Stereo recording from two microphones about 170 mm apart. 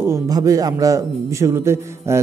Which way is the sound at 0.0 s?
20° right (ahead or behind).